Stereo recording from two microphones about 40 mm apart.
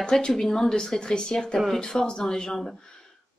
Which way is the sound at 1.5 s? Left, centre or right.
Centre.